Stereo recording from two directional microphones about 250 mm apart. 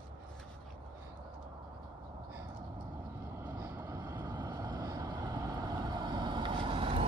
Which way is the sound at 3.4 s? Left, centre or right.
Centre.